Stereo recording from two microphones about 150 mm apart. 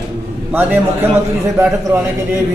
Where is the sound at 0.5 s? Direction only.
10° right (ahead or behind).